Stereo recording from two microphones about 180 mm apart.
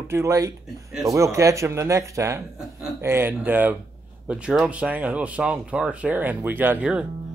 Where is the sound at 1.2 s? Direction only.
15° right (ahead or behind).